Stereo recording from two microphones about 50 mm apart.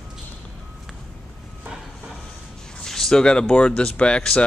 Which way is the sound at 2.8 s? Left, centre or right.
Centre.